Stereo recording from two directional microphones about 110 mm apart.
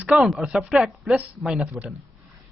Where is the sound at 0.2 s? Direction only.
Centre (ahead or behind).